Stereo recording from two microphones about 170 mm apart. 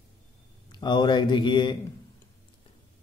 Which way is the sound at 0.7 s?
25° left (ahead or behind).